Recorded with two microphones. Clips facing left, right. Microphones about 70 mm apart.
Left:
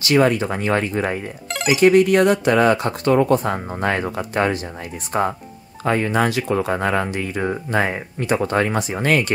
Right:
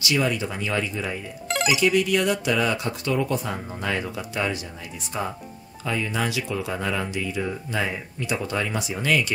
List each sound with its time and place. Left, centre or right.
0.0 s speech: left